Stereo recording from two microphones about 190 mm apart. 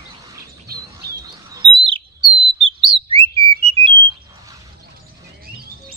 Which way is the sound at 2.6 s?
30° right (ahead or behind).